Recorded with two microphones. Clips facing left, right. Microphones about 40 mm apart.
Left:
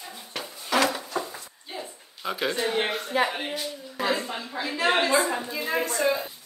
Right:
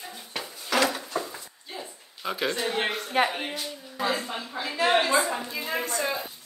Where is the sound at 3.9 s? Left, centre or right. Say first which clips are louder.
Left 1 dB; left.